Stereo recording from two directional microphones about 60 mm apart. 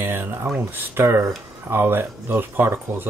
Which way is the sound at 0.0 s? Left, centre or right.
Right.